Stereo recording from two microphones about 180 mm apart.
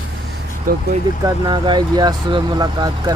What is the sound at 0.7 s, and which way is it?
Speech, 50° right (ahead or behind).